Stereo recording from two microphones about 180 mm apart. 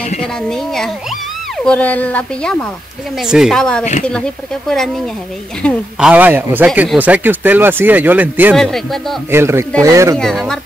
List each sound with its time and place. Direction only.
0.5 s speech: centre (ahead or behind)
3.2 s speech: centre (ahead or behind)
8.5 s speech: centre (ahead or behind)
9.3 s speech: 15° right (ahead or behind)
10.1 s speech: centre (ahead or behind)